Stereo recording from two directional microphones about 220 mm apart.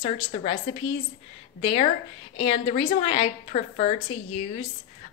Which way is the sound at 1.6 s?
25° left (ahead or behind).